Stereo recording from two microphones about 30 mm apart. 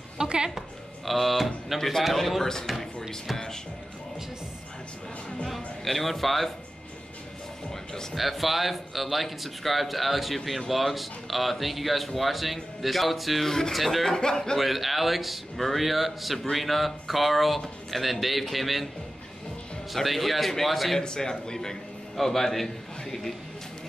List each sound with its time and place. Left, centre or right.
0.2 s a sound: right
0.6 s speech: centre
1.8 s speech: centre
2.6 s speech: centre
5.9 s speech: centre
8.1 s speech: centre
13.4 s speech: centre
14.1 s a man's voice: left
14.6 s speech: centre
19.9 s speech: centre
21.0 s a man's voice: left
22.1 s a man's voice: centre